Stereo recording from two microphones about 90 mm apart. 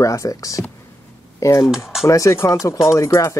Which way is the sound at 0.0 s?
40° left (ahead or behind).